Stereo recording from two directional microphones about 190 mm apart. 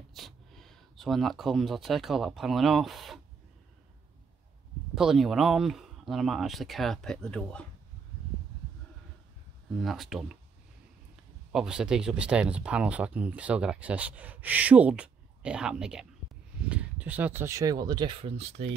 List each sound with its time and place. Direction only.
0.1 s speech: centre (ahead or behind)
4.9 s speech: centre (ahead or behind)
9.7 s speech: centre (ahead or behind)
11.5 s speech: 5° right (ahead or behind); by 18.7 s 30° right (ahead or behind)